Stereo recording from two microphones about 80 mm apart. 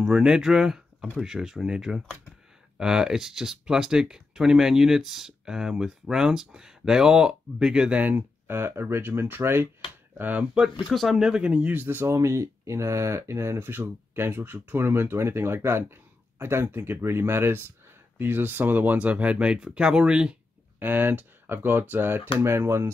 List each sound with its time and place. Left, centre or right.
0.0 s speech: centre
10.9 s speech: centre
20.8 s speech: right